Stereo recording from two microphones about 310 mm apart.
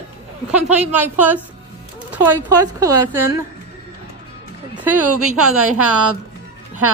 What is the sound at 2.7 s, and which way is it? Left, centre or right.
Speech, centre.